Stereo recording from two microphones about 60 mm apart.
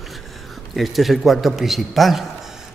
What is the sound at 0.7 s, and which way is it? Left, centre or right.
A man's voice, centre.